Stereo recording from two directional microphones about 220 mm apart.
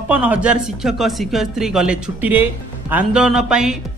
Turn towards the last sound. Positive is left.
turn(degrees=-5)  # may be behind; listen again after turning